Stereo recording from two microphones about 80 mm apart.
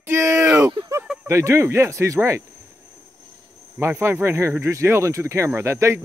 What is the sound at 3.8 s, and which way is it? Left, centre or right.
Speech, right.